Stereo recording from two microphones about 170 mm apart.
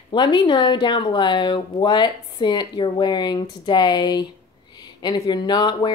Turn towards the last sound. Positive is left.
turn(degrees=25)  # may be behind; listen again after turning